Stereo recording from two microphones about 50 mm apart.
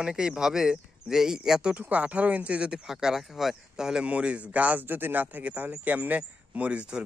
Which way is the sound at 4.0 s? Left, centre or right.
Right.